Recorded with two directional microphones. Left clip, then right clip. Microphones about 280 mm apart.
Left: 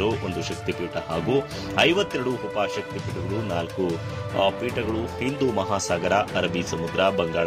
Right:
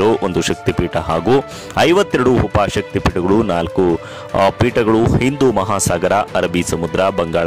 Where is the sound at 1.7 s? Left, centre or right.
Right.